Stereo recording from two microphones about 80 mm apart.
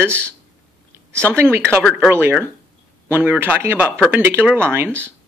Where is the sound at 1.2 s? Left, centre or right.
Right.